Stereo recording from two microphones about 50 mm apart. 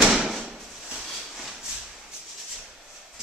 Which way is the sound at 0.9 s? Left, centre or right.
Centre.